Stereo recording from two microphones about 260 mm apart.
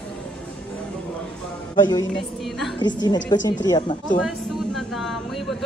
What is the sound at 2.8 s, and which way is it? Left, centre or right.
Speech, centre.